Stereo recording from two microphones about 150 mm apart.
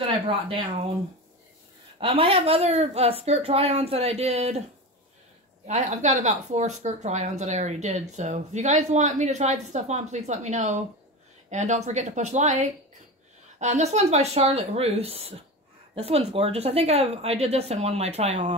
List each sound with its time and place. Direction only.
2.0 s speech: 35° right (ahead or behind)
5.7 s speech: 50° right (ahead or behind)